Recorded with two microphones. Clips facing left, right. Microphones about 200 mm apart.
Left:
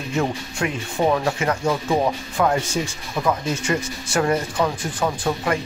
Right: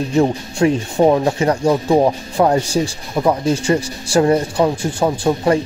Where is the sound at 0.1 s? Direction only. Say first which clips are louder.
Right 6 dB; 30° right (ahead or behind).